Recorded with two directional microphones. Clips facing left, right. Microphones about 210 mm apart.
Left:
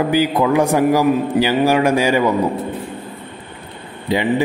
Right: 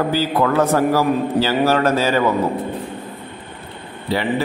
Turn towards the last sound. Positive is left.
turn(degrees=15)  # may be behind; listen again after turning